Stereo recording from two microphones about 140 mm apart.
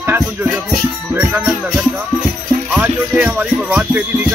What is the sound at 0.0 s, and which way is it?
Music, 15° right (ahead or behind).